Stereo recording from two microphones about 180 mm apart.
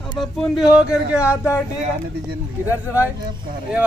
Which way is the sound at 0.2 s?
Centre (ahead or behind).